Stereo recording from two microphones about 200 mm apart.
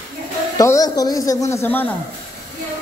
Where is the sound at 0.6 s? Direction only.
15° left (ahead or behind).